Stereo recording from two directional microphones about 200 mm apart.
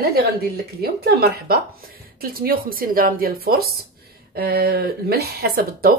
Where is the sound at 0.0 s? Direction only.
50° right (ahead or behind).